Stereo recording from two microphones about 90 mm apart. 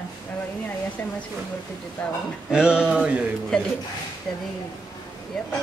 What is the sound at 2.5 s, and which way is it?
Speech, 10° right (ahead or behind).